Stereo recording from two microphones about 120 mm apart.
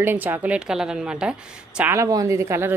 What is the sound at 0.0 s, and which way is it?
A woman's voice, 15° right (ahead or behind).